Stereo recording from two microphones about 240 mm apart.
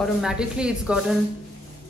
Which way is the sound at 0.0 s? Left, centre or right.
Centre.